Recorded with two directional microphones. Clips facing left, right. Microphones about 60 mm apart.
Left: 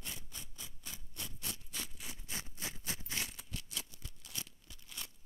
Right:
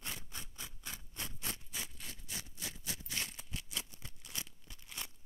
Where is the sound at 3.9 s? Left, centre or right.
Right.